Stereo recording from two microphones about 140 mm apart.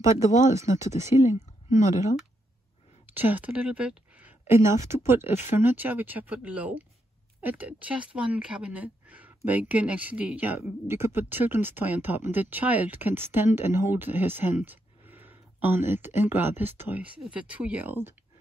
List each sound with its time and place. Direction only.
0.6 s speech: 20° right (ahead or behind)
1.8 s speech: 60° left (ahead or behind)
3.2 s speech: 15° right (ahead or behind)